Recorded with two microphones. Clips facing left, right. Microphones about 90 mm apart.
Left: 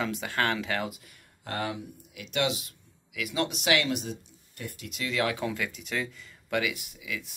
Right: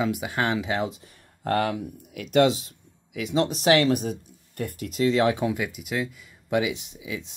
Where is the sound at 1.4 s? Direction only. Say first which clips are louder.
Right 9 dB; 60° right (ahead or behind); by 6.0 s 10° right (ahead or behind).